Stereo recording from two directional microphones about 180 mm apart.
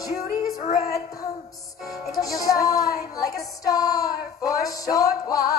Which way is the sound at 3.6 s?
20° left (ahead or behind).